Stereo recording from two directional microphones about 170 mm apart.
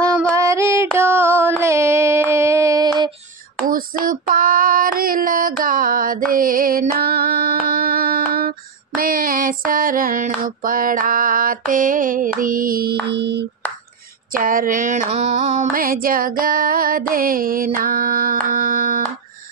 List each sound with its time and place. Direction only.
0.0 s female singing: 20° right (ahead or behind)
1.6 s a sound: 15° right (ahead or behind)
3.7 s female singing: 55° right (ahead or behind); by 13.5 s 90° right
14.3 s mantra: 55° right (ahead or behind)
15.7 s music: 55° right (ahead or behind)